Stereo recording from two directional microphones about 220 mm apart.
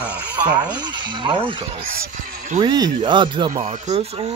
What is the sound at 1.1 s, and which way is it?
Speech, 20° right (ahead or behind).